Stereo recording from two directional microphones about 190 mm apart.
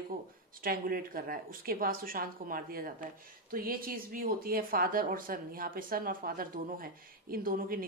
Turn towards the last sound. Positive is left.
turn(degrees=-50)  # may be behind; listen again after turning